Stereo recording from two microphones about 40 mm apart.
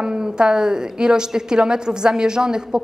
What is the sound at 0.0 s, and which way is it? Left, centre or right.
A woman's voice, right.